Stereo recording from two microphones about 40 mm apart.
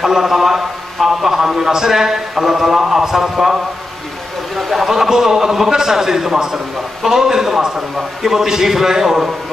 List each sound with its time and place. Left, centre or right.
0.0 s a sound: centre
0.9 s a man's voice: centre
4.6 s a man's voice: centre